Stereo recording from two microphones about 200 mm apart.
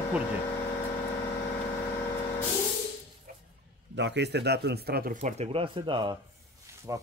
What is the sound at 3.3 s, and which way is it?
Music, 40° right (ahead or behind).